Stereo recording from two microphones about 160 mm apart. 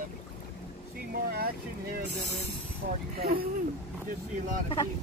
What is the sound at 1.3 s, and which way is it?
Speech, 70° right (ahead or behind).